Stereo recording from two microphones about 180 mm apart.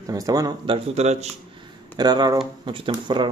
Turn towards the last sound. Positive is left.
turn(degrees=-25)  # may be behind; listen again after turning